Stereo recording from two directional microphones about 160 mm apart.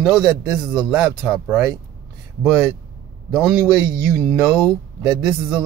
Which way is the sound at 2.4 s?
Centre (ahead or behind).